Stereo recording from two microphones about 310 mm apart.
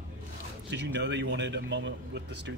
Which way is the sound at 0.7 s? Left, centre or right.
Right.